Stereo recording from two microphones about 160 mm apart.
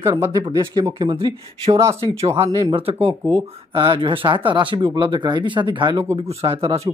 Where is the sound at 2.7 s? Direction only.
35° right (ahead or behind).